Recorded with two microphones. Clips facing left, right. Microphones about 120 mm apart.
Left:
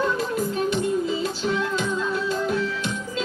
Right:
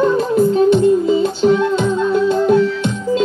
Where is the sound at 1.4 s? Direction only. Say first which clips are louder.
Right 13 dB; 40° right (ahead or behind).